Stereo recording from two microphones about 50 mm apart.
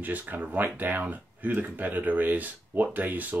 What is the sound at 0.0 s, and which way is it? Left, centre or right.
Speech, right.